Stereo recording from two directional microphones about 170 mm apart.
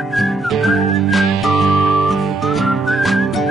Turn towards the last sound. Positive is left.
turn(degrees=0)  # may be behind; listen again after turning